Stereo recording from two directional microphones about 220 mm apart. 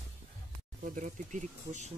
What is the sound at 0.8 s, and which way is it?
Speech, 35° right (ahead or behind).